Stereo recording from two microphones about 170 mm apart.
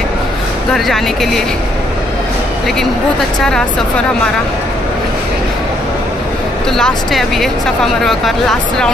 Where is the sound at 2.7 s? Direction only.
5° left (ahead or behind).